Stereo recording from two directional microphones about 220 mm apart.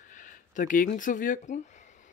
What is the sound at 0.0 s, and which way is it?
Speech, 35° left (ahead or behind).